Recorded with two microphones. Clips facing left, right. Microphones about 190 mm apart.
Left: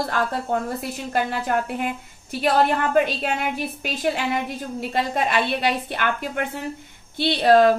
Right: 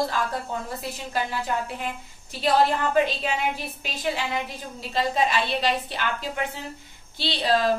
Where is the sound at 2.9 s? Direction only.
55° left (ahead or behind).